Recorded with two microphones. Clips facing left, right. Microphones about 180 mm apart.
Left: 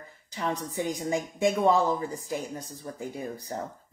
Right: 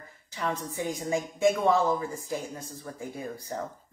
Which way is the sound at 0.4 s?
15° left (ahead or behind).